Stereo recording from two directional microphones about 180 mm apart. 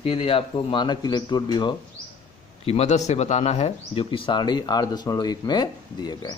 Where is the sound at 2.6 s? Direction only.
35° left (ahead or behind).